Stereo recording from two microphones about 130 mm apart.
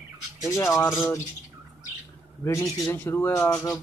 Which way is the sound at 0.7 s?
Centre (ahead or behind).